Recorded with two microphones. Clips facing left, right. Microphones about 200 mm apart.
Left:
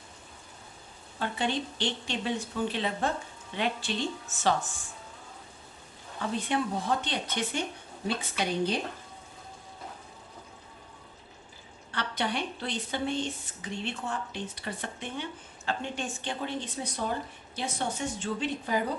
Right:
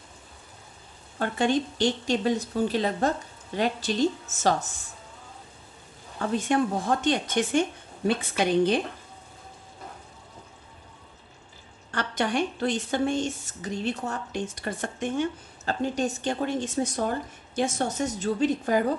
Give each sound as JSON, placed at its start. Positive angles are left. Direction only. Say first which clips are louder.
{"t": 1.2, "sound": "speech", "louder": "right 6 dB", "side_deg": -45}
{"t": 6.3, "sound": "a woman's voice", "louder": "right 6 dB", "side_deg": -45}
{"t": 11.9, "sound": "a woman's voice", "louder": "right 5 dB", "side_deg": -45}